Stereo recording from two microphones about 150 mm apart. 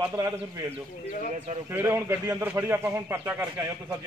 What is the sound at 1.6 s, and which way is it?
Speech, 15° right (ahead or behind).